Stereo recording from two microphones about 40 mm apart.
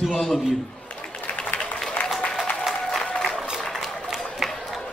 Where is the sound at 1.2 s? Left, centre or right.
Left.